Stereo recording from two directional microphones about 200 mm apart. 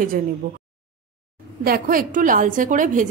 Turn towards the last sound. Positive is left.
turn(degrees=-40)  # may be behind; listen again after turning